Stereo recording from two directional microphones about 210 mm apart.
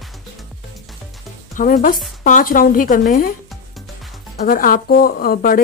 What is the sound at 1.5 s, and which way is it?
Speech, 40° left (ahead or behind).